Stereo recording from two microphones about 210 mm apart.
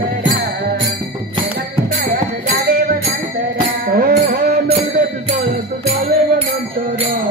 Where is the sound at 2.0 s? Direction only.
45° right (ahead or behind).